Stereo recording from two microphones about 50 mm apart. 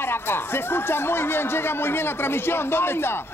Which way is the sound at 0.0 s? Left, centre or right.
Left.